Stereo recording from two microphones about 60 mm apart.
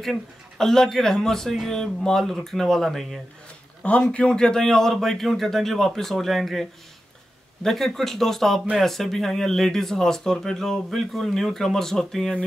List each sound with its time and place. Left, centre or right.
0.0 s speech: centre
4.1 s speech: centre